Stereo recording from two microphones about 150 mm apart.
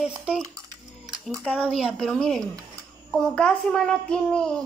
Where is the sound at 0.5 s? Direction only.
25° right (ahead or behind).